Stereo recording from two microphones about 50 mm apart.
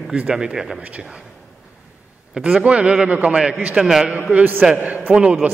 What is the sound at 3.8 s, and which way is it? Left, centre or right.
Speech, centre.